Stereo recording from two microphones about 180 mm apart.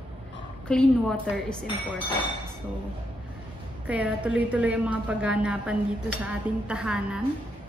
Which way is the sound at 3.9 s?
5° right (ahead or behind).